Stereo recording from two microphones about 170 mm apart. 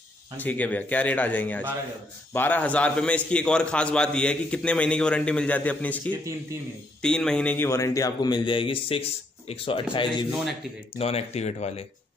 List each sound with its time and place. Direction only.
0.4 s a man's voice: 10° left (ahead or behind); by 11.8 s 40° left (ahead or behind)